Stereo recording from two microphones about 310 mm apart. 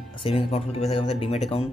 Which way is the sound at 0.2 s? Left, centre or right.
Centre.